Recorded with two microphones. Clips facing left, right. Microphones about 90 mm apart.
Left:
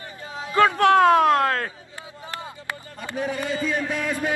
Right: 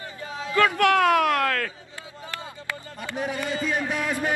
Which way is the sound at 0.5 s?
25° left (ahead or behind).